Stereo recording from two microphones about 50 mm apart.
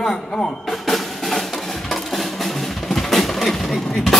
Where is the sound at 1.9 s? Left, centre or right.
Centre.